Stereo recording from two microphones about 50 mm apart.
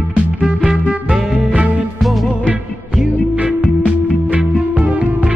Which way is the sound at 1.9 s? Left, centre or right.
Centre.